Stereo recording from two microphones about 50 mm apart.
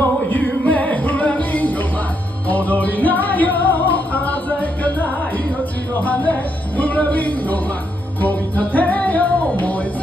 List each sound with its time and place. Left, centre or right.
0.3 s music: left